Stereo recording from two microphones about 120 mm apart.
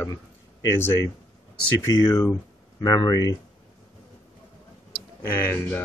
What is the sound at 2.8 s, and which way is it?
Speech, 30° left (ahead or behind).